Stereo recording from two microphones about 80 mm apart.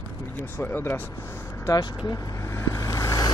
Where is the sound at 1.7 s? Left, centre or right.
Left.